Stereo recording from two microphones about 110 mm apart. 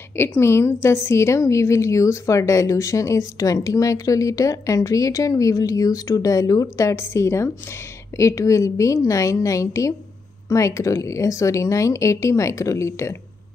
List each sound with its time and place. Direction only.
0.1 s a woman's voice: 20° left (ahead or behind)